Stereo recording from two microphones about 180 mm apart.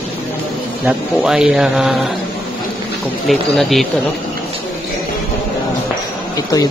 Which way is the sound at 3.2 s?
Centre (ahead or behind).